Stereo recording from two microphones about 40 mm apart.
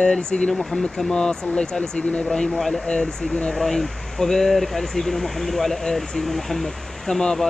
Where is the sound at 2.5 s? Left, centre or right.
Centre.